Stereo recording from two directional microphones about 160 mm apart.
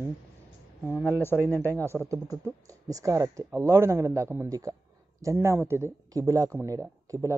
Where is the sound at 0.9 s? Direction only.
10° left (ahead or behind).